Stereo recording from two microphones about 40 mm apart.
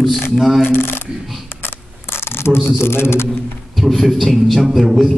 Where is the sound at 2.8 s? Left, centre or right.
Left.